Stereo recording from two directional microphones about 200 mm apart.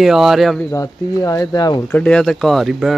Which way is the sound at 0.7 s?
15° left (ahead or behind).